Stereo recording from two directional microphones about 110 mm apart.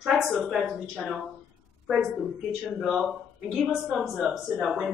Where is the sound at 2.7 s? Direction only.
Centre (ahead or behind).